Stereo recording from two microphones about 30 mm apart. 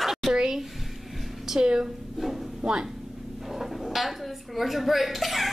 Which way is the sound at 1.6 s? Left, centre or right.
Right.